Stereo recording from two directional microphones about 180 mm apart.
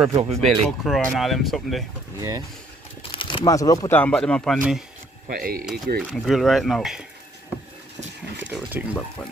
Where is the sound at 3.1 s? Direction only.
25° left (ahead or behind); by 4.6 s 5° left (ahead or behind).